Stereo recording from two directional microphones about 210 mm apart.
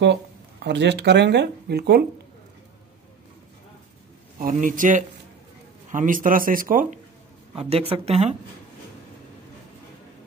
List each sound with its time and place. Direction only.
0.7 s speech: 55° right (ahead or behind)
4.4 s speech: 40° right (ahead or behind)
7.5 s speech: 30° right (ahead or behind)